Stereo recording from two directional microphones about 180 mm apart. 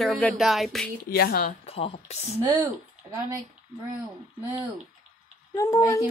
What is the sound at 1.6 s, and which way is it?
Speech, 30° left (ahead or behind).